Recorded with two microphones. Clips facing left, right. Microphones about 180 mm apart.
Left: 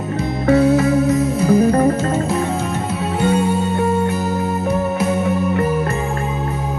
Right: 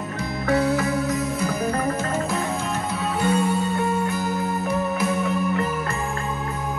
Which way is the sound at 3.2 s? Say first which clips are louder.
Left 5 dB; 25° left (ahead or behind).